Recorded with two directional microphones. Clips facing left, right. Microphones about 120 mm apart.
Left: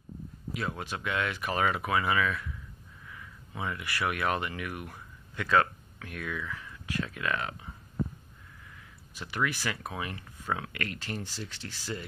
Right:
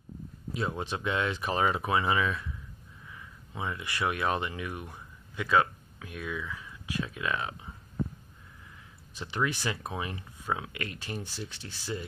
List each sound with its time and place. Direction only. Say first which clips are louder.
0.6 s speech: right 3 dB; 25° right (ahead or behind)
9.1 s speech: right 1 dB; 25° right (ahead or behind)